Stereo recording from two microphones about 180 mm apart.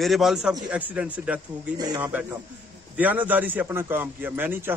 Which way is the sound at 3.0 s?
10° right (ahead or behind).